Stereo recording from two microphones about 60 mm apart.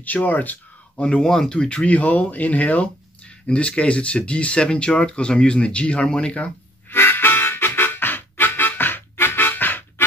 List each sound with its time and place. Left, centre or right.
0.0 s a sound: left
1.0 s speech: centre
6.9 s harmonica: left